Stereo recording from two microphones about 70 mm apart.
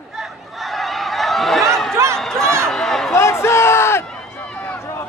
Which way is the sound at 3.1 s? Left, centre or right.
Left.